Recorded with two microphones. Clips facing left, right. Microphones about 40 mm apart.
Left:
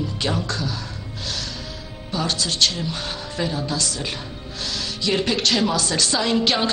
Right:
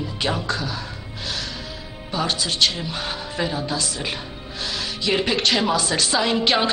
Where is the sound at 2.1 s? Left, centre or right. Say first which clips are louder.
Even; centre.